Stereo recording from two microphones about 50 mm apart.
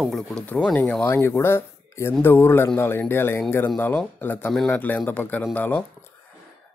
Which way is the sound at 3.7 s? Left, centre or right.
Left.